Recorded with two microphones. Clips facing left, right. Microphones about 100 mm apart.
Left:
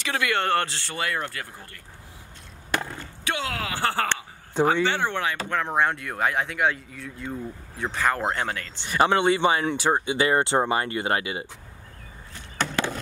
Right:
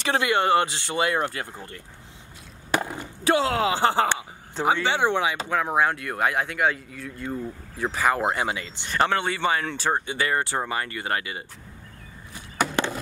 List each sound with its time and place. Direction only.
0.0 s speech: 30° right (ahead or behind)
0.3 s speech: 15° right (ahead or behind)
2.7 s skateboard: 15° right (ahead or behind)
3.3 s speech: 30° right (ahead or behind); by 8.8 s 10° right (ahead or behind)
8.8 s speech: 15° left (ahead or behind)
12.4 s chop: 10° right (ahead or behind)